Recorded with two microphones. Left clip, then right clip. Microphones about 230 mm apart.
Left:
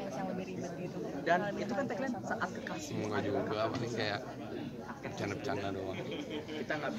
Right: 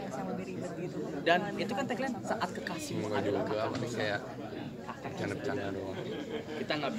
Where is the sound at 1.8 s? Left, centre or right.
Right.